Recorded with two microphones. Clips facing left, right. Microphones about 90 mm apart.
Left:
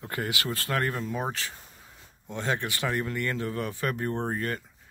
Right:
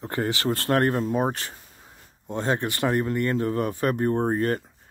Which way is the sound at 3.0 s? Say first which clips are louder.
Right 6 dB; 30° right (ahead or behind).